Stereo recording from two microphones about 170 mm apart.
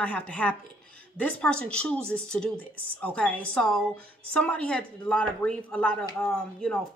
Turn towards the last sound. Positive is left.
turn(degrees=5)  # may be behind; listen again after turning